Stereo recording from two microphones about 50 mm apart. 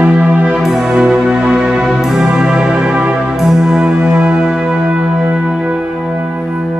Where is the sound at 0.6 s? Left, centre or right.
Centre.